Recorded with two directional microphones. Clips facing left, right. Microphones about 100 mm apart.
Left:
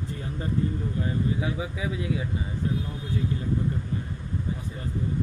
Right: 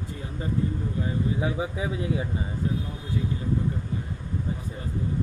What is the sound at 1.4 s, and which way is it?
Speech, 30° right (ahead or behind).